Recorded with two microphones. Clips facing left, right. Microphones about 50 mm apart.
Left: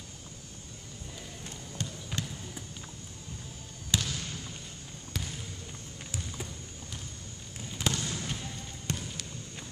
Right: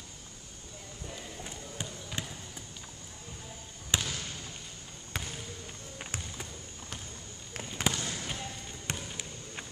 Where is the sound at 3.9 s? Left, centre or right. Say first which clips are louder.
Even; right.